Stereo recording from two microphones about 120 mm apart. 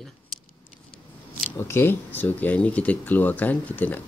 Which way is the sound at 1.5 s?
20° left (ahead or behind).